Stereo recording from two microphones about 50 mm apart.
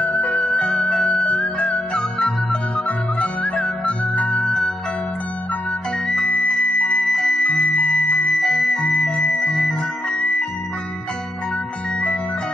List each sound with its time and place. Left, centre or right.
0.0 s music: left
6.2 s music: left
7.0 s music: centre